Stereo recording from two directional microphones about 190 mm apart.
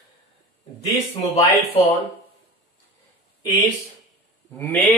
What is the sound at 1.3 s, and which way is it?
Speech, 30° left (ahead or behind).